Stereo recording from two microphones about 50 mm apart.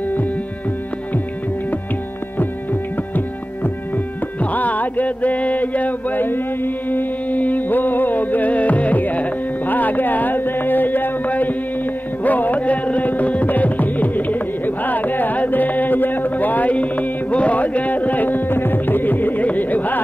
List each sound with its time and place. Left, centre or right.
2.3 s music: left